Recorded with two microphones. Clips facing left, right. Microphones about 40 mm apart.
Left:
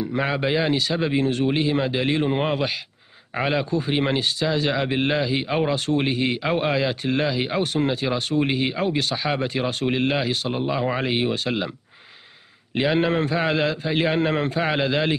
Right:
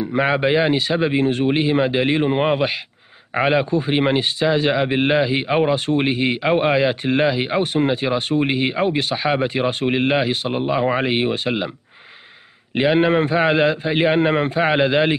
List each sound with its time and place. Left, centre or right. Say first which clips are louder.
0.0 s speech: right 5 dB; right
12.7 s speech: right 5 dB; centre